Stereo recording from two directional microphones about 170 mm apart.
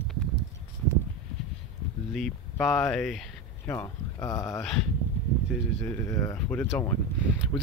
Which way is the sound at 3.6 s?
15° left (ahead or behind).